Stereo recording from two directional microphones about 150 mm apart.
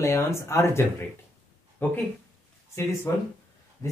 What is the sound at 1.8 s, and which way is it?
Speech, 15° left (ahead or behind).